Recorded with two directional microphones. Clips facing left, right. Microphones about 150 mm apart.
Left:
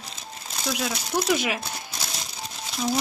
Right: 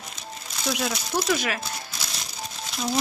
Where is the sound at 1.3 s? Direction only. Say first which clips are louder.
Left 2 dB; 15° left (ahead or behind).